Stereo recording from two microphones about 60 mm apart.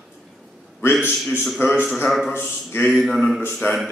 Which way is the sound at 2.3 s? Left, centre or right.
Left.